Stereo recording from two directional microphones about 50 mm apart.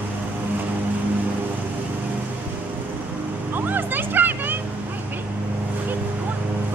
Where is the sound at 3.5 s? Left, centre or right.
Right.